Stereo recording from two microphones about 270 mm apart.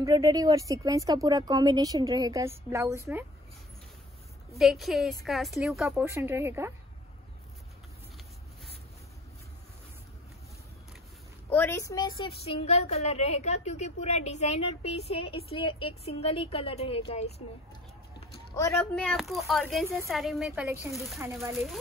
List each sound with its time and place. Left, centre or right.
0.0 s speech: centre
4.6 s speech: centre
11.5 s a woman's voice: centre
18.6 s speech: centre